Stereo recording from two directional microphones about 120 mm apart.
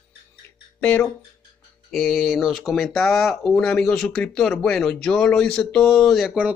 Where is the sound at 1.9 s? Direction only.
Centre (ahead or behind).